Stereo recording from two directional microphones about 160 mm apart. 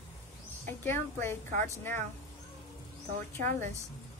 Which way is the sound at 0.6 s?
15° left (ahead or behind).